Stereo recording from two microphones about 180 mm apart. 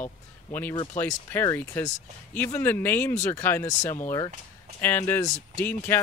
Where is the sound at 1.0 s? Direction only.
10° left (ahead or behind).